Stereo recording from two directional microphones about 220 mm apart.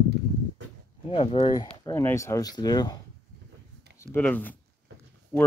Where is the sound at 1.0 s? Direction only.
25° left (ahead or behind).